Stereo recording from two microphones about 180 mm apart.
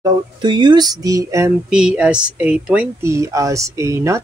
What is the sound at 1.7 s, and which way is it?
Speech, 5° right (ahead or behind).